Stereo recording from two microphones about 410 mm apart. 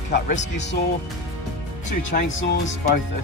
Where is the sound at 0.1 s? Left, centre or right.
Centre.